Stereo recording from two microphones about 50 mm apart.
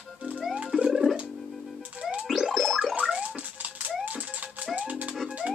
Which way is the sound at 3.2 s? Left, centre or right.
Right.